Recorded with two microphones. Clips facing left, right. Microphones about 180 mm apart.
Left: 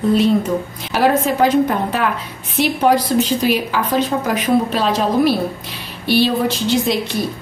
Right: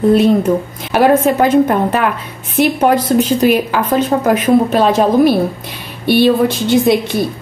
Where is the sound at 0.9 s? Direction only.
50° right (ahead or behind).